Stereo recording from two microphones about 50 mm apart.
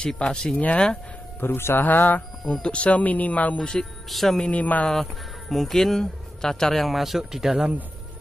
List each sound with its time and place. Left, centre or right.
0.0 s speech: centre
1.4 s speech: left
2.4 s speech: left
4.1 s speech: centre
4.5 s speech: left
4.8 s speech: centre